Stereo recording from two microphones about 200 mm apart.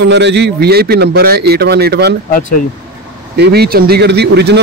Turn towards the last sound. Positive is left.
turn(degrees=-55)  # may be behind; listen again after turning